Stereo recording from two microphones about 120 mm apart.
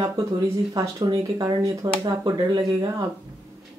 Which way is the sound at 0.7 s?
30° right (ahead or behind).